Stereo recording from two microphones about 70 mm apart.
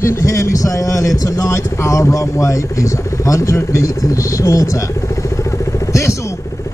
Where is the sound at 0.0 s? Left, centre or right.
Left.